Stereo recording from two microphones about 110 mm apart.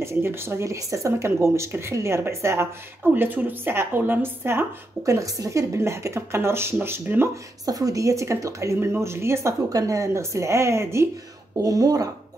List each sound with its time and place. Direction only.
0.0 s speech: 25° right (ahead or behind)
7.6 s speech: 35° right (ahead or behind)